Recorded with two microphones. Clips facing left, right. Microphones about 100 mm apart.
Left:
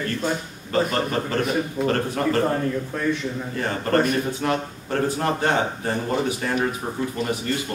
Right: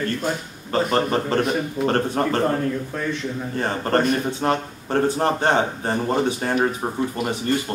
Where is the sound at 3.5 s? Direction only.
35° right (ahead or behind).